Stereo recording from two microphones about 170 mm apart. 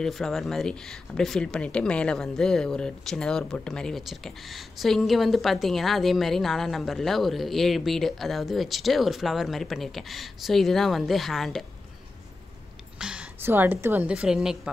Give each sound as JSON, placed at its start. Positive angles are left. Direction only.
{"t": 0.0, "sound": "speech", "side_deg": 0}
{"t": 13.0, "sound": "a woman's voice", "side_deg": -5}